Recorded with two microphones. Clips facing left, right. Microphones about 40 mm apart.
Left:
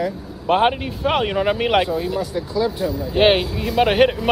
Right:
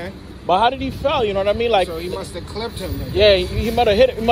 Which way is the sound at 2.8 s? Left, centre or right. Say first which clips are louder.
Left 5 dB; right.